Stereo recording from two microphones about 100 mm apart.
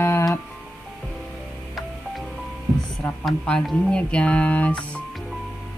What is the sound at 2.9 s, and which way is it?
Speech, 5° left (ahead or behind).